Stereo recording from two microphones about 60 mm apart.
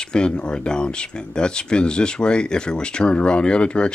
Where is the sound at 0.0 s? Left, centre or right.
Centre.